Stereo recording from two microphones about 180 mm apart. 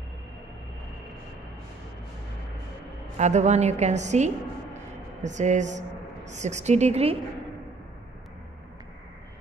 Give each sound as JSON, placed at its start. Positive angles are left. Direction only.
{"t": 3.2, "sound": "a woman's voice", "side_deg": -40}